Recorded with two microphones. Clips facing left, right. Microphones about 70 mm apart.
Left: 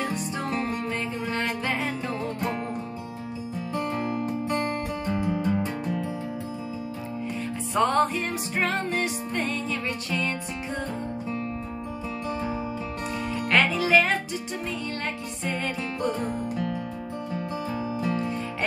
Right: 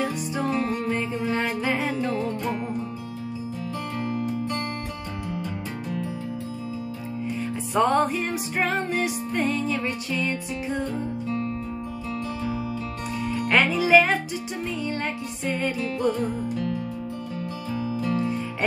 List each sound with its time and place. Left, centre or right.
0.0 s music: centre
4.0 s music: left
5.2 s music: left
7.7 s music: centre
13.5 s music: centre